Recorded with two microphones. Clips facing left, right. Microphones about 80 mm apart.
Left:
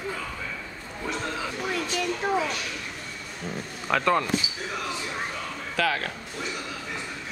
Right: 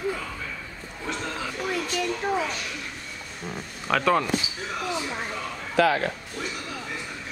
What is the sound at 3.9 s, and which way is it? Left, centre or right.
Speech, centre.